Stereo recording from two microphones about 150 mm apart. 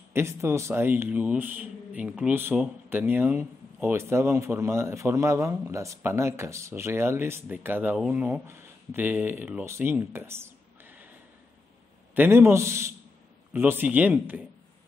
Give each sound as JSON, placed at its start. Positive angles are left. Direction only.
{"t": 0.1, "sound": "speech", "side_deg": -20}
{"t": 12.2, "sound": "speech", "side_deg": -15}